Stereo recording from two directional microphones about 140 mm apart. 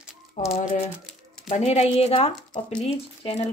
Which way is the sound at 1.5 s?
50° left (ahead or behind).